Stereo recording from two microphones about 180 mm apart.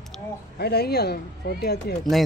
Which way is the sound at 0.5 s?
60° left (ahead or behind).